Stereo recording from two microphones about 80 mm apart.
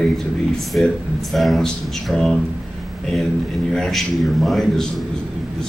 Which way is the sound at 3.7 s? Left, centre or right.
Centre.